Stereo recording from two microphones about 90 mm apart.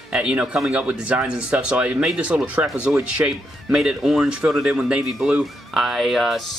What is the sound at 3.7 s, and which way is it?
Speech, 5° right (ahead or behind).